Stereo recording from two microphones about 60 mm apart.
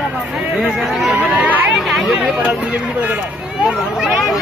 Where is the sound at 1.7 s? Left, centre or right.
Centre.